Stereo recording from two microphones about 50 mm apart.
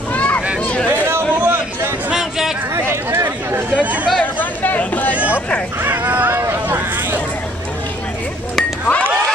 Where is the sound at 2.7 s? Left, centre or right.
Right.